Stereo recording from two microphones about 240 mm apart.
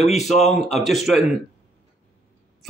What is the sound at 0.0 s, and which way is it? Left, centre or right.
Speech, left.